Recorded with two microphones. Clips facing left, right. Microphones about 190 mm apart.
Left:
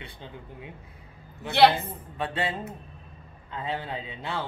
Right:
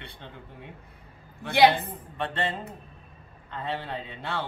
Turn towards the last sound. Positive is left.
turn(degrees=-60)  # may be behind; listen again after turning